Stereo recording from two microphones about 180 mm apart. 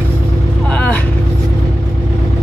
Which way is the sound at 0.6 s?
10° left (ahead or behind).